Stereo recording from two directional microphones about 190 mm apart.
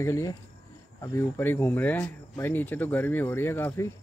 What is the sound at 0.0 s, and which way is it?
Speech, 15° left (ahead or behind).